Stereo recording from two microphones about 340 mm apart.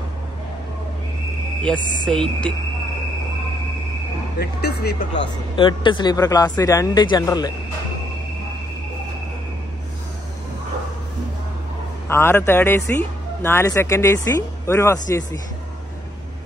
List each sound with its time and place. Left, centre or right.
1.7 s music: centre
4.4 s speech: left
5.6 s speech: centre
12.1 s speech: centre